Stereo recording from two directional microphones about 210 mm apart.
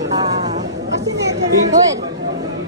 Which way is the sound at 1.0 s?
55° right (ahead or behind).